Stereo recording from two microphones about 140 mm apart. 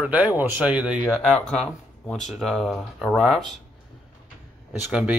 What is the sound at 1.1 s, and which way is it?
Speech, 5° left (ahead or behind).